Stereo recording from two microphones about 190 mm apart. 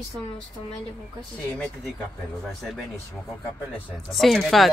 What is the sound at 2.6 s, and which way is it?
Speech, centre (ahead or behind).